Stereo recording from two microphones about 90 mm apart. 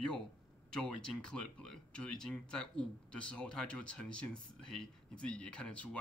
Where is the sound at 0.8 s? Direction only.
10° left (ahead or behind).